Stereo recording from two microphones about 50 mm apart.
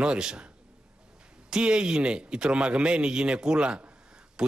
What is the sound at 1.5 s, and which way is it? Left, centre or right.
A man's voice, centre.